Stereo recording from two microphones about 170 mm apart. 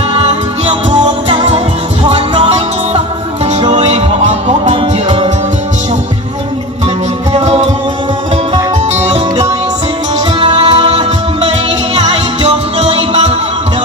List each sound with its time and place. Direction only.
0.1 s music: 35° right (ahead or behind)
7.3 s music: 35° right (ahead or behind)
10.4 s music: 30° right (ahead or behind)
12.0 s music: 35° right (ahead or behind)